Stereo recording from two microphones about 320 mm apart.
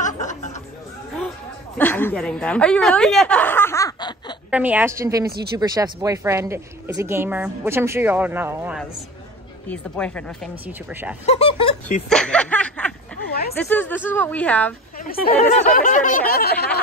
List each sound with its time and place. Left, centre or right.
0.0 s snicker: left
1.8 s a woman's voice: centre
4.5 s a woman's voice: centre
9.7 s speech: centre
11.2 s speech: centre
12.1 s snicker: centre
13.3 s a sound: left
13.6 s speech: centre
15.0 s speech: left